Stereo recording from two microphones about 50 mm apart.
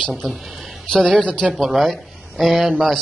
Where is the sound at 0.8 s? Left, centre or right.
Centre.